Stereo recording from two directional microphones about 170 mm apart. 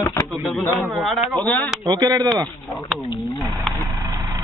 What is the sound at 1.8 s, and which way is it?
Speech, 25° right (ahead or behind).